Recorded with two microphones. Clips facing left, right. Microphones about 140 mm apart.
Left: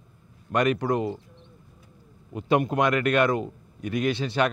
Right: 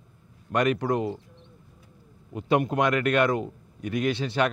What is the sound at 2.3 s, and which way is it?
Speech, 25° left (ahead or behind).